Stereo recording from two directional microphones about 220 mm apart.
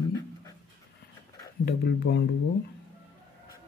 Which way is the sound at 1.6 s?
45° left (ahead or behind).